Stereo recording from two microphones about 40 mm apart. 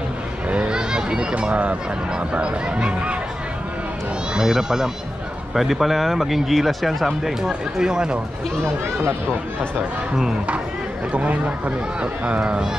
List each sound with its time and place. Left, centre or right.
0.7 s a sound: right
1.5 s speech: right
2.1 s speech: right
4.4 s speech: centre
7.4 s speech: centre
11.1 s speech: right
12.4 s speech: right